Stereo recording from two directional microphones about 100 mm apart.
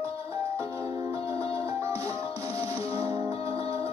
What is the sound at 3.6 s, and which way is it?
Music, 85° left.